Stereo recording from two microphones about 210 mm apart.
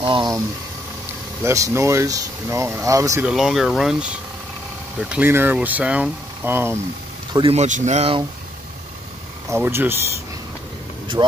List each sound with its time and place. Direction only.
0.0 s speech: 20° right (ahead or behind)
1.4 s speech: 15° right (ahead or behind)
3.3 s speech: centre (ahead or behind)
7.3 s speech: 30° right (ahead or behind)
9.5 s speech: 10° right (ahead or behind)
11.2 s speech: 15° right (ahead or behind)